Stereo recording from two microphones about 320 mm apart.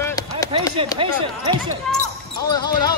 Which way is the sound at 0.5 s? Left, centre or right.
Centre.